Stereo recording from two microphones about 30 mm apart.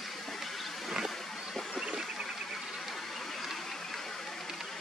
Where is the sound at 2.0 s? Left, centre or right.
Centre.